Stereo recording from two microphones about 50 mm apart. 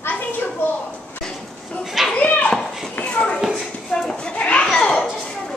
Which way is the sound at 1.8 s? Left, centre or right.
Centre.